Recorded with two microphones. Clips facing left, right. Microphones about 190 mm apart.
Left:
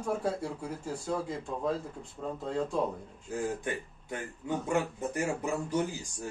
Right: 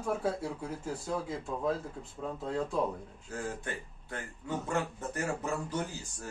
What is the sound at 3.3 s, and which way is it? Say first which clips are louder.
A man's voice: left 5 dB; 15° left (ahead or behind).